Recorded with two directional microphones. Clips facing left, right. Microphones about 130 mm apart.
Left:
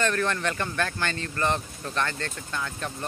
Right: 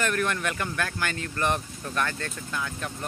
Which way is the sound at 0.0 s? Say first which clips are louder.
Left 1 dB; 10° right (ahead or behind).